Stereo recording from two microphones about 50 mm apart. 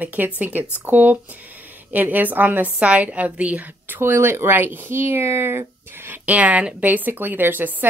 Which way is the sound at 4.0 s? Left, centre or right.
Right.